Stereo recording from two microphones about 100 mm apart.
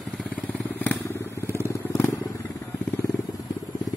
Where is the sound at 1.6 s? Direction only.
25° left (ahead or behind).